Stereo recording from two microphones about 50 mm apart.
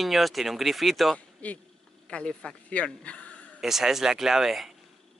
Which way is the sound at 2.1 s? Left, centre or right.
Centre.